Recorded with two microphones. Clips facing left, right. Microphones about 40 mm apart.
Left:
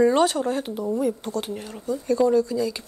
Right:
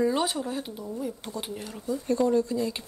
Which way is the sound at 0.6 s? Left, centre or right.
Left.